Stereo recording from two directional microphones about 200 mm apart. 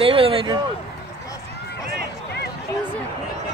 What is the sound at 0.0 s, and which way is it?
Speech, 30° right (ahead or behind).